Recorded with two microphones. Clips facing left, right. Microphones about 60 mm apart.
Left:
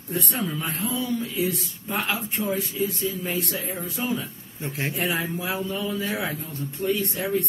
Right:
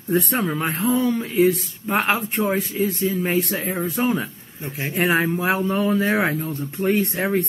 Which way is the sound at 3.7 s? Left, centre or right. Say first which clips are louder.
Right 7 dB; right.